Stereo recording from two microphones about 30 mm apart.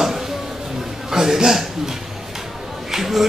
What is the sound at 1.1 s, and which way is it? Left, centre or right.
Speech, centre.